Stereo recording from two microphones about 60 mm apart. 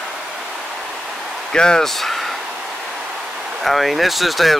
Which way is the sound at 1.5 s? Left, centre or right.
Centre.